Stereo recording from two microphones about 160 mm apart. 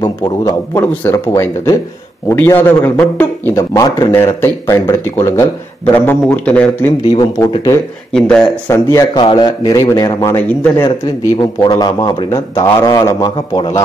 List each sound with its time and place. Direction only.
0.0 s a man's voice: 25° left (ahead or behind); by 6.9 s 10° left (ahead or behind)
7.1 s speech: 25° left (ahead or behind)
8.1 s speech: 5° left (ahead or behind)
8.6 s speech: 20° left (ahead or behind)